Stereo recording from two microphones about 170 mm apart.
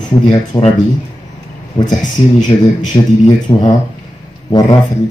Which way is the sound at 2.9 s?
25° left (ahead or behind).